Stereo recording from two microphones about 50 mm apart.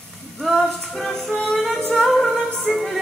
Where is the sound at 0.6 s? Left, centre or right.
Centre.